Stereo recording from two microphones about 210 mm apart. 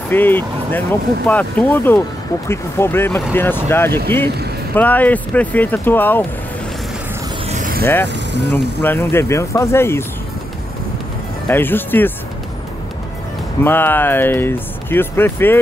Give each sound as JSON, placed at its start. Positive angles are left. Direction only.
{"t": 0.1, "sound": "speech", "side_deg": 10}
{"t": 7.4, "sound": "vehicle", "side_deg": -35}
{"t": 7.8, "sound": "speech", "side_deg": 10}
{"t": 11.4, "sound": "speech", "side_deg": 10}
{"t": 13.7, "sound": "speech", "side_deg": 10}